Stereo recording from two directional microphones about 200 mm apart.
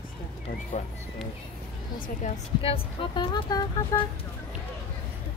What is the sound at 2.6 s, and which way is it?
Speech, 30° left (ahead or behind).